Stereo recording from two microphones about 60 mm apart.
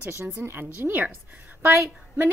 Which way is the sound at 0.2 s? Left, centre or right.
Right.